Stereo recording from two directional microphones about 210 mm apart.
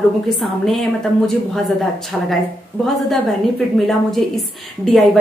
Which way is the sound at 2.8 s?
Centre (ahead or behind).